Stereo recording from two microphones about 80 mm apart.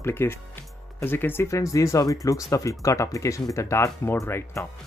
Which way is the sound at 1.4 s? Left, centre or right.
Left.